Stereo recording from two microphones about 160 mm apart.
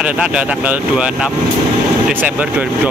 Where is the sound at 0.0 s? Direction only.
5° right (ahead or behind).